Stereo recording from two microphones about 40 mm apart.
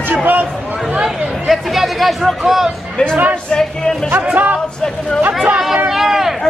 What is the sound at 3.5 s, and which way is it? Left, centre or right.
Speech, centre.